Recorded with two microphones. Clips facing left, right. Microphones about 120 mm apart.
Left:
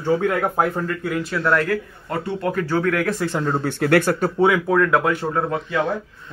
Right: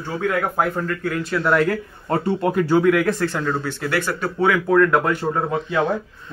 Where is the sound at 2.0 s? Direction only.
35° right (ahead or behind).